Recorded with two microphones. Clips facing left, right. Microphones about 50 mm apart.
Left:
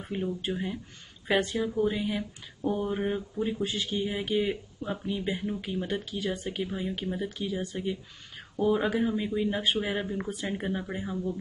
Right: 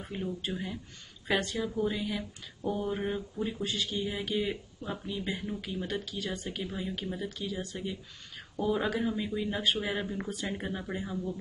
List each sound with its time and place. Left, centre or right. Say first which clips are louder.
0.0 s speech: left 4 dB; centre
9.8 s speech: left 2 dB; centre